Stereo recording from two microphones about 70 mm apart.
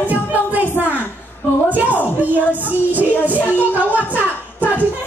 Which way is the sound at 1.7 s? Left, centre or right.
Right.